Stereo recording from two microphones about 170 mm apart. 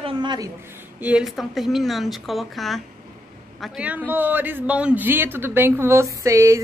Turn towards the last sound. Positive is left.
turn(degrees=-20)  # may be behind; listen again after turning